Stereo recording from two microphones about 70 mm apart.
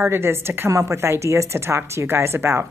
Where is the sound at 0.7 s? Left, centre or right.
Right.